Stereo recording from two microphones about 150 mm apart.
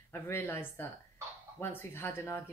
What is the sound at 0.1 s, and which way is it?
Speech, 15° left (ahead or behind).